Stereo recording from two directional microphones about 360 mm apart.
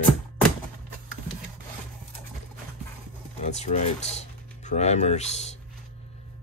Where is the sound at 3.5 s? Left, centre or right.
Centre.